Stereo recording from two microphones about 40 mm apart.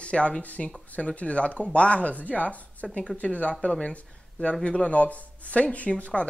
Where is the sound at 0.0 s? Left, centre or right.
Left.